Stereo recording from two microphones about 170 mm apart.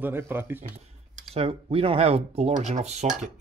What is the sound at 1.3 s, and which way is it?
Speech, 35° right (ahead or behind).